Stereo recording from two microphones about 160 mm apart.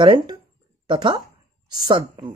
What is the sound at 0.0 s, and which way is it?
Speech, 30° right (ahead or behind).